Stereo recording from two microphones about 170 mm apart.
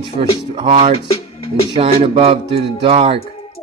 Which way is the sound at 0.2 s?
35° right (ahead or behind).